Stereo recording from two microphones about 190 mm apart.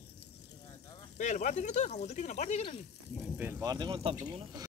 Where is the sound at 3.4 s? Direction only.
15° right (ahead or behind).